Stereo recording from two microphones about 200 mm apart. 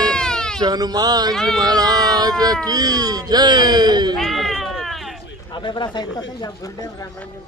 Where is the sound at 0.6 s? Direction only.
20° right (ahead or behind).